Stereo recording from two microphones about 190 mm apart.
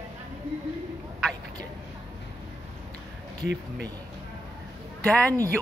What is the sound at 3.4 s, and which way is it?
Speech, 60° right (ahead or behind).